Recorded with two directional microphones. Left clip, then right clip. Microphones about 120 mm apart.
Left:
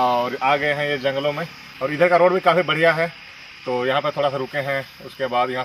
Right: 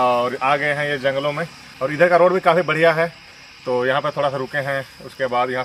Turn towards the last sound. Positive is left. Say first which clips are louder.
# right 1 dB
turn(degrees=0)  # may be behind; listen again after turning